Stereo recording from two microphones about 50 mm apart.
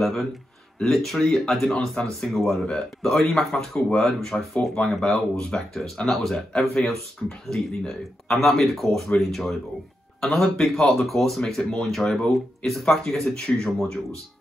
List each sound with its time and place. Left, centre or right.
0.7 s speech: centre
6.3 s speech: centre